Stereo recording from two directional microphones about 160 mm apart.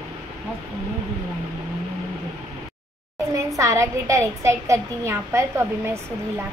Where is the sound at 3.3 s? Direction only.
20° right (ahead or behind).